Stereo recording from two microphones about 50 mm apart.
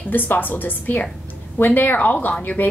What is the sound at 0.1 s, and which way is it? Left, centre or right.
A woman's voice, left.